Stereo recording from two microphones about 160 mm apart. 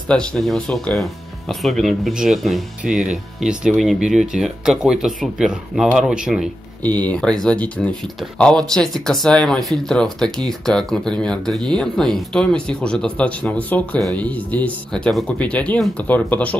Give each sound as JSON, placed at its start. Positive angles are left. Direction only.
{"t": 0.1, "sound": "speech", "side_deg": 5}
{"t": 6.8, "sound": "speech", "side_deg": 10}